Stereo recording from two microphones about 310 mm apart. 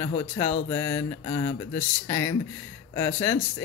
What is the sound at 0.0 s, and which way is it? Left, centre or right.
Speech, centre.